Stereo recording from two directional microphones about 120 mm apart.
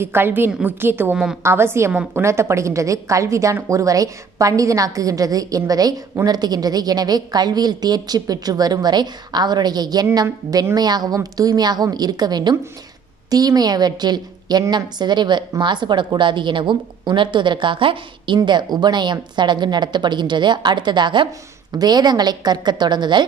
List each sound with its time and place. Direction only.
0.0 s a woman's voice: 20° right (ahead or behind)
1.1 s a woman's voice: 5° right (ahead or behind)
1.4 s a woman's voice: 20° right (ahead or behind); by 23.2 s 40° right (ahead or behind)